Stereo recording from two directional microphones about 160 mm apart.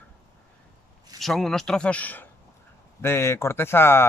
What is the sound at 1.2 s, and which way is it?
Speech, centre (ahead or behind).